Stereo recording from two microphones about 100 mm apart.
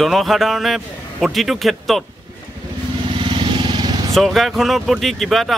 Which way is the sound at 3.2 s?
55° right (ahead or behind).